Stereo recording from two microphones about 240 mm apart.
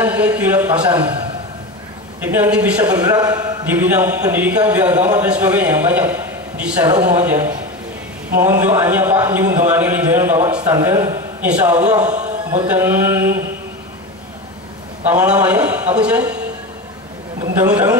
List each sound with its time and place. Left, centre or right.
0.0 s a man's voice: centre
2.2 s a man's voice: centre
3.1 s a man's voice: centre
12.1 s a sound: right
12.4 s a man's voice: centre
15.0 s a man's voice: centre
17.6 s a man's voice: centre